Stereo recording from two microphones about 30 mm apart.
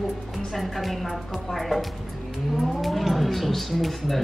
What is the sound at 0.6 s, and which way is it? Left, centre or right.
Speech, centre.